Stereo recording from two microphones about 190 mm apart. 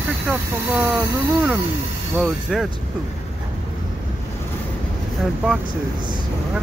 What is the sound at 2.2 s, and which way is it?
Speech, centre (ahead or behind).